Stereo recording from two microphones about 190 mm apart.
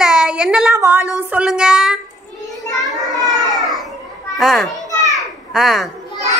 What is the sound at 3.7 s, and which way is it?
Children playing, centre (ahead or behind).